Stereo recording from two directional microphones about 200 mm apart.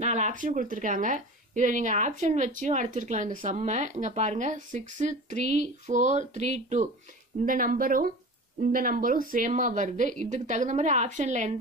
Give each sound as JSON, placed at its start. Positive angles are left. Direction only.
{"t": 0.0, "sound": "a woman's voice", "side_deg": -35}